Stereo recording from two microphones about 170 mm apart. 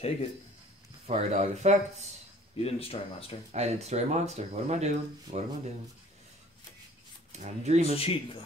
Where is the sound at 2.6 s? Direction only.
35° left (ahead or behind).